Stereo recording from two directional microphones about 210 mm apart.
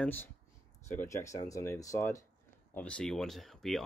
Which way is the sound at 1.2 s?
15° left (ahead or behind).